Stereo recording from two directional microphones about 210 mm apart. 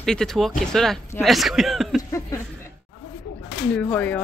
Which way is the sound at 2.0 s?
15° left (ahead or behind).